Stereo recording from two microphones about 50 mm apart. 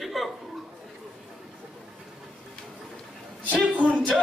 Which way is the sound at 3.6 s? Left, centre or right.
Right.